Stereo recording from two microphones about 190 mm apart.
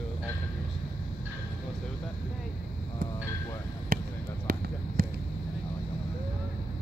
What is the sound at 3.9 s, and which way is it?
Basketball bounce, 50° right (ahead or behind).